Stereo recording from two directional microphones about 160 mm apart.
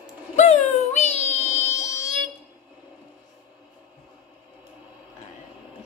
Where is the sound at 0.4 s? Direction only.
45° left (ahead or behind).